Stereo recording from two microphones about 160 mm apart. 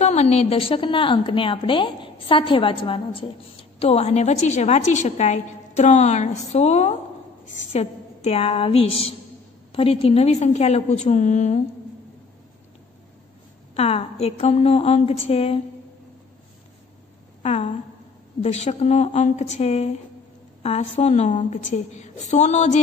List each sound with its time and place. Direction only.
0.0 s a woman's voice: 40° left (ahead or behind)
13.7 s a woman's voice: 40° left (ahead or behind)
17.4 s a woman's voice: 45° left (ahead or behind)